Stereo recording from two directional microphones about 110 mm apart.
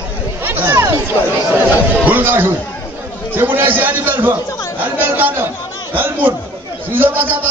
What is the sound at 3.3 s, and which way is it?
A man's voice, 20° right (ahead or behind).